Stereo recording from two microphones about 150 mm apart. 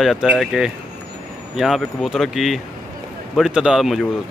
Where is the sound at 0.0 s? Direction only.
Centre (ahead or behind).